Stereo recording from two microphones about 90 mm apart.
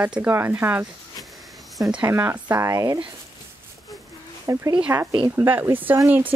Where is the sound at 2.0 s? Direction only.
30° right (ahead or behind).